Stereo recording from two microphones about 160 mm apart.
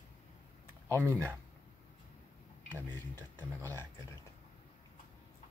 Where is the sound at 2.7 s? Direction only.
10° left (ahead or behind).